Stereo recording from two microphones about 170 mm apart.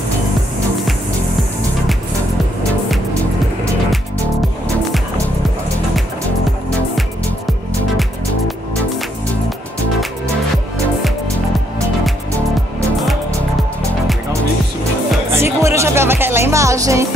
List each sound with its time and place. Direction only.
15.3 s music: 15° right (ahead or behind)